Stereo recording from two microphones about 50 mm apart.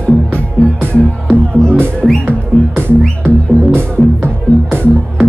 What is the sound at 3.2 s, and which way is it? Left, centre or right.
Music, right.